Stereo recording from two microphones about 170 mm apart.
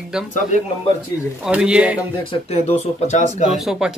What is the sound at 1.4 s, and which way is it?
Speech, 5° right (ahead or behind).